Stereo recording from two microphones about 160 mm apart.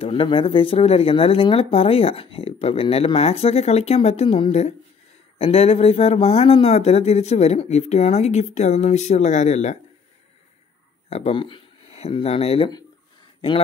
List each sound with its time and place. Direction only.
0.0 s speech: 35° left (ahead or behind)
11.1 s speech: 40° left (ahead or behind)